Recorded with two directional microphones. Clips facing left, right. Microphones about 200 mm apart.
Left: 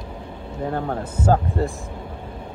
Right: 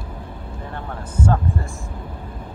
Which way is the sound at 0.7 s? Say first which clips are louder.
Left 9 dB; 40° left (ahead or behind).